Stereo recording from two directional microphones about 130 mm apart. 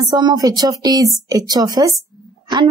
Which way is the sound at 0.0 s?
35° right (ahead or behind).